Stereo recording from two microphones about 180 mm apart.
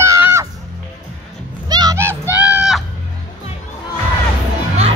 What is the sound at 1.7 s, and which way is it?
Music, 20° right (ahead or behind).